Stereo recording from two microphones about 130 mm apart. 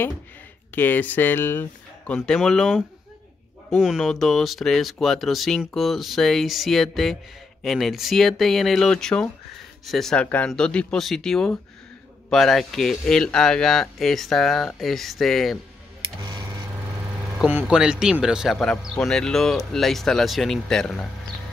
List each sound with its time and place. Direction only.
0.7 s speech: 15° left (ahead or behind)
2.1 s speech: 5° left (ahead or behind)
16.2 s a sound: 30° right (ahead or behind)
17.5 s speech: 10° right (ahead or behind)